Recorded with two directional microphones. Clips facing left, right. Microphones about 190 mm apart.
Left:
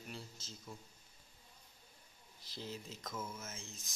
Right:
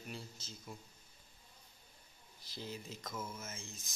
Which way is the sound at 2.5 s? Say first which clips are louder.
Right 1 dB; centre (ahead or behind).